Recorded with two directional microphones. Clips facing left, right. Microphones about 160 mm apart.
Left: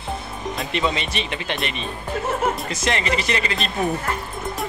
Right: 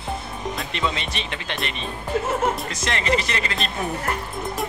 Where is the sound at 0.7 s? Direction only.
10° left (ahead or behind).